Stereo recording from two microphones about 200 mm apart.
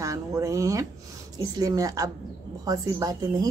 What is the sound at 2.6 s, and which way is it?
Speech, 20° right (ahead or behind).